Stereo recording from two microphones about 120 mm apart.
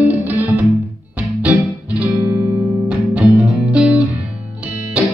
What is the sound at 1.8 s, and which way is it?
Music, 10° right (ahead or behind).